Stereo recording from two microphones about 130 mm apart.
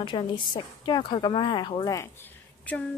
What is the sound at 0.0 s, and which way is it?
Speech, 40° left (ahead or behind).